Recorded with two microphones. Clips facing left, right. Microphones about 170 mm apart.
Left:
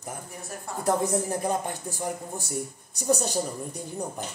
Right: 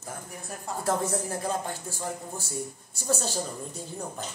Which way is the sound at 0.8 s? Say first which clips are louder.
Left 4 dB; 15° left (ahead or behind).